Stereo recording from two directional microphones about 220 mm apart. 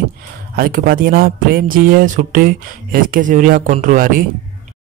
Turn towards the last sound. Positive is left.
turn(degrees=-40)  # may be behind; listen again after turning